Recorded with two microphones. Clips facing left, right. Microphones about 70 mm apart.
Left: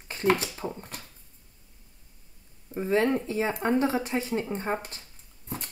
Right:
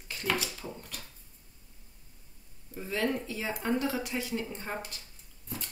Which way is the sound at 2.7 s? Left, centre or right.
Left.